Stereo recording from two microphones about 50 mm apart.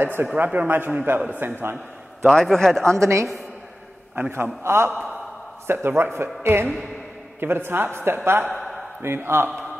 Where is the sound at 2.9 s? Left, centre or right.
Right.